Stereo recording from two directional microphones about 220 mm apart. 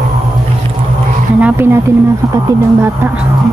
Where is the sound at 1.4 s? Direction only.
10° right (ahead or behind).